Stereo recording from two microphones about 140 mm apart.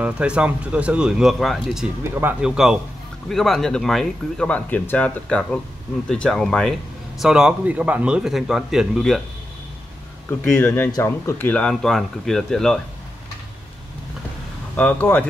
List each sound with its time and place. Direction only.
0.0 s speech: 10° right (ahead or behind)
10.6 s speech: 15° left (ahead or behind)
11.5 s speech: 5° left (ahead or behind)
14.8 s speech: 10° left (ahead or behind)